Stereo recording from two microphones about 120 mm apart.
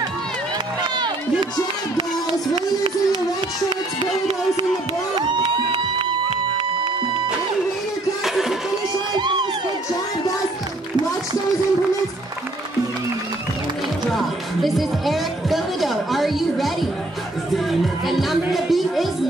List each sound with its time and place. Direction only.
2.5 s a sound: 45° right (ahead or behind)
5.1 s music: 40° right (ahead or behind)
9.1 s crowd: 40° right (ahead or behind)
14.1 s music: centre (ahead or behind)